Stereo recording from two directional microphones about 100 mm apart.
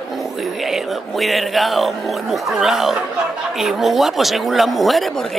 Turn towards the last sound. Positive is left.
turn(degrees=0)  # may be behind; listen again after turning